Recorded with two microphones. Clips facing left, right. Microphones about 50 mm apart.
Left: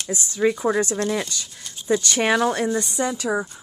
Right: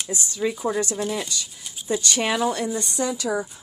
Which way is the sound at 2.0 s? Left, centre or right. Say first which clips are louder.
Left 2 dB; left.